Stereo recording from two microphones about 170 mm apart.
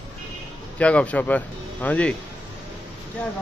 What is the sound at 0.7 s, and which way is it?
Speech, 10° left (ahead or behind).